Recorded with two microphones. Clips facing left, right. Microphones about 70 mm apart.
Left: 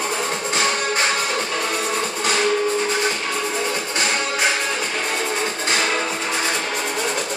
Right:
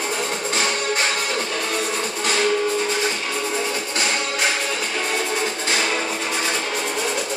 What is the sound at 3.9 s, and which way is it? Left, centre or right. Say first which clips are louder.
Music: left 1 dB; left.